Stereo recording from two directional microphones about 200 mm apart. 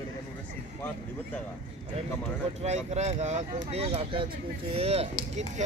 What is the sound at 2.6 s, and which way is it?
Speech, 35° right (ahead or behind).